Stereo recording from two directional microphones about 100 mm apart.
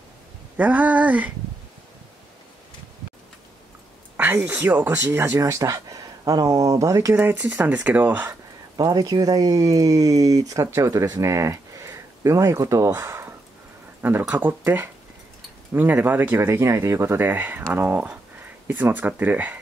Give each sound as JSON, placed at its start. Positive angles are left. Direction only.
{"t": 0.6, "sound": "speech", "side_deg": -15}
{"t": 4.2, "sound": "speech", "side_deg": -10}
{"t": 7.2, "sound": "speech", "side_deg": -20}
{"t": 8.3, "sound": "speech", "side_deg": -40}
{"t": 15.7, "sound": "speech", "side_deg": -20}